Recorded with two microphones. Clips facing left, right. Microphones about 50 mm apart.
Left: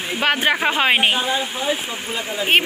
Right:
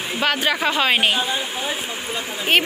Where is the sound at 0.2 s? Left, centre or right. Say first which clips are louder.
Left 2 dB; left.